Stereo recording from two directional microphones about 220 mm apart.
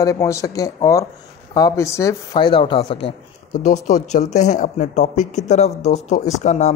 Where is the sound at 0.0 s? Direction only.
15° left (ahead or behind).